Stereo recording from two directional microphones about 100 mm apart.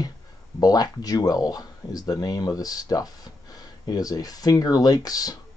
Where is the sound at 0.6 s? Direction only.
40° left (ahead or behind).